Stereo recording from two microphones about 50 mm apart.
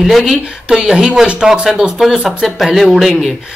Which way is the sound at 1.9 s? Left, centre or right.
Centre.